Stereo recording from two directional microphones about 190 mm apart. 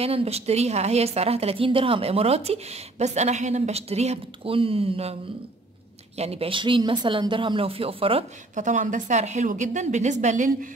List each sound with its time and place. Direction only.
0.0 s a woman's voice: 30° right (ahead or behind)
6.1 s a woman's voice: 30° right (ahead or behind)